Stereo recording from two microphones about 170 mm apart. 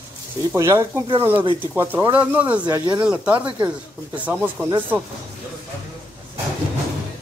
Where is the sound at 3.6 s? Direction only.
10° right (ahead or behind).